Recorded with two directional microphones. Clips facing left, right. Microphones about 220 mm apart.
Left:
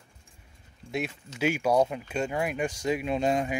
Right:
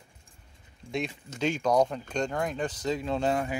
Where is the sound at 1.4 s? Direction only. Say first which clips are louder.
Left 1 dB; 10° left (ahead or behind).